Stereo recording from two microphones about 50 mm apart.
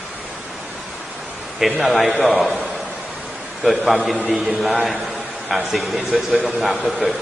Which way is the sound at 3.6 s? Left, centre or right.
Centre.